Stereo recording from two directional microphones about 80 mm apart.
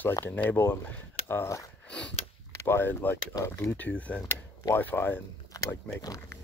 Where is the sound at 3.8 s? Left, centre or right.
Centre.